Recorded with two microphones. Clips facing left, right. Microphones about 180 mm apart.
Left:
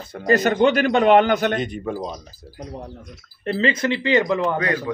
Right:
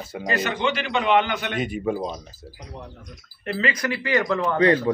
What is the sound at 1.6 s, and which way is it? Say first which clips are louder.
Speech: right 1 dB; 5° right (ahead or behind).